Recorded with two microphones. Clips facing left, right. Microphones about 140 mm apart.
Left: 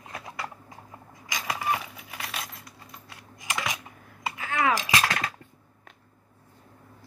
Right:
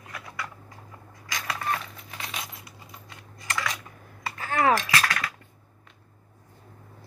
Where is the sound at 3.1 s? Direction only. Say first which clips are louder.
Even; 15° left (ahead or behind).